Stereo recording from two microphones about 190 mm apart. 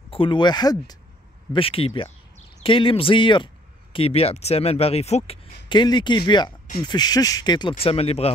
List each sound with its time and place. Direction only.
0.1 s speech: 25° left (ahead or behind)